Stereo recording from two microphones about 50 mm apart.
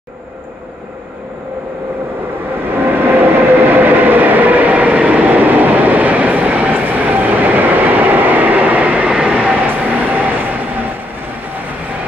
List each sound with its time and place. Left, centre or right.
2.6 s train: right
9.1 s vehicle: centre
9.6 s train: right